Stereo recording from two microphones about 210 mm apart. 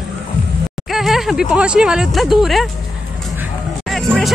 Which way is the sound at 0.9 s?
Centre (ahead or behind).